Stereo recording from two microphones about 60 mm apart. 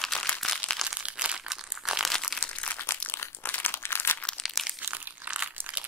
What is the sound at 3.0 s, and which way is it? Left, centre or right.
Crumpling, left.